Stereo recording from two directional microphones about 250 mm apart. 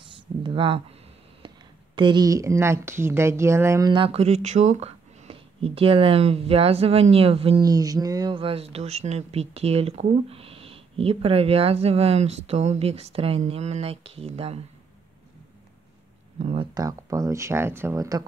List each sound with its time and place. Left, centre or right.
0.4 s speech: right
1.4 s a sound: centre
2.0 s speech: centre
16.3 s speech: right